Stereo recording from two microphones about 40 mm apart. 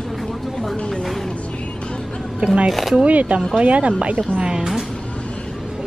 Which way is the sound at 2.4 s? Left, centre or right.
Right.